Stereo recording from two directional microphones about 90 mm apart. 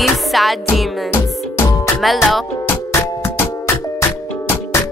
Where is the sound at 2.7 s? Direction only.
40° left (ahead or behind).